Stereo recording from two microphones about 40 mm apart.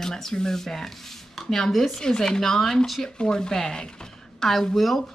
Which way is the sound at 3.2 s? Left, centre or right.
Centre.